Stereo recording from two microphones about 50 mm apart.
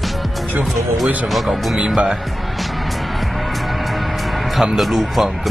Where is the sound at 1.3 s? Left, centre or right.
Centre.